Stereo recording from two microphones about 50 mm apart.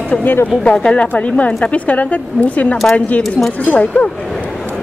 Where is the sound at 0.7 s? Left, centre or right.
Left.